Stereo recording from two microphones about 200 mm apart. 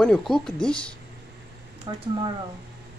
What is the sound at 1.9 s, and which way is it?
Speech, 20° right (ahead or behind).